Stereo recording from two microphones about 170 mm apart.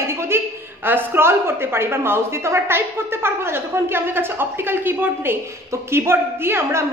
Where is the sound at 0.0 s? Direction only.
15° right (ahead or behind).